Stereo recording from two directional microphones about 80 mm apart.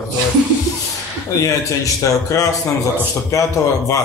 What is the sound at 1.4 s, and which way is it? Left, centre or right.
A man's voice, left.